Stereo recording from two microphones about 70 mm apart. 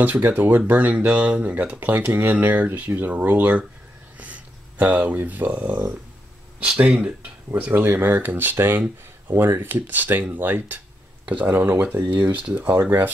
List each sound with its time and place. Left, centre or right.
0.0 s speech: right
11.5 s speech: right